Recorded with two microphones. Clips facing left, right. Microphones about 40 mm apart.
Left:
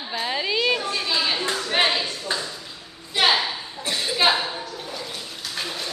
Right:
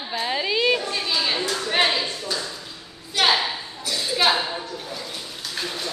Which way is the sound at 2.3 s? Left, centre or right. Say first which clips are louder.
Left 1 dB; left.